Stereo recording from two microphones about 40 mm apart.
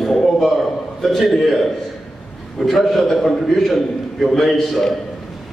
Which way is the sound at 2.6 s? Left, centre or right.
Centre.